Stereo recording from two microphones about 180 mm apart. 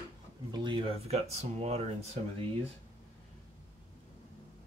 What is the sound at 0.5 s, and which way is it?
Speech, 25° right (ahead or behind).